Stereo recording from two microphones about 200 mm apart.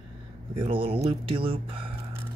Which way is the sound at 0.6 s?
25° right (ahead or behind).